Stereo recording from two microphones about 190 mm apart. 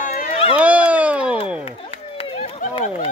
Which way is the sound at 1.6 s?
30° left (ahead or behind).